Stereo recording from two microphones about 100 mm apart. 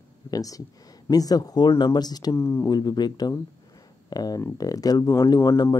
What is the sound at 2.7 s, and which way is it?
Speech, 45° left (ahead or behind).